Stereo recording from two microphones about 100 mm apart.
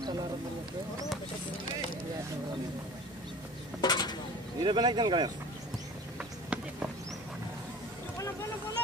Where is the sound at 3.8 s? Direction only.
45° left (ahead or behind).